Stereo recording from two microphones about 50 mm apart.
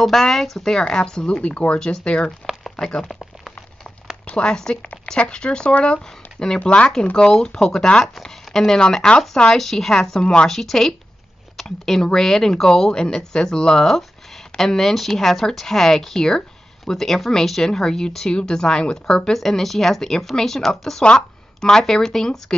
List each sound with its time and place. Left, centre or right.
0.0 s speech: centre
4.4 s a woman's voice: centre
10.2 s speech: centre
10.5 s speech: centre
19.3 s speech: centre